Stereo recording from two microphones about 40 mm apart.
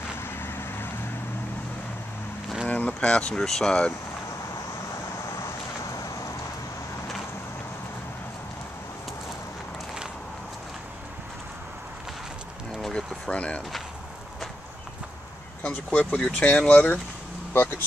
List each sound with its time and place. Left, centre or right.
0.2 s vehicle: left
2.6 s a sound: left
3.0 s speech: left
3.4 s speech: centre
12.9 s vehicle: left
15.6 s speech: left
16.3 s speech: left
16.6 s speech: left
17.5 s speech: left